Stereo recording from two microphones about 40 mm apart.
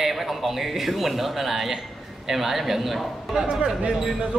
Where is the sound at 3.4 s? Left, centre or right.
Right.